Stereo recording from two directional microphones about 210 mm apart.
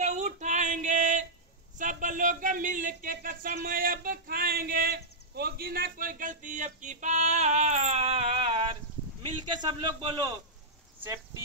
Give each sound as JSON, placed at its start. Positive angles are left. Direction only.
{"t": 0.0, "sound": "female singing", "side_deg": -35}
{"t": 1.8, "sound": "a man's voice", "side_deg": -40}